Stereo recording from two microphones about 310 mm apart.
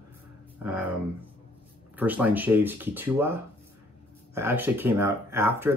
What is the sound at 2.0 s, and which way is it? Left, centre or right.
Speech, centre.